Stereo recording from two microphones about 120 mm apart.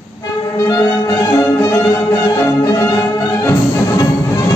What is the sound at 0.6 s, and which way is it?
Music, 25° left (ahead or behind).